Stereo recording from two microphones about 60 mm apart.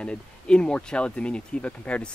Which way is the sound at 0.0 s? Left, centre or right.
Centre.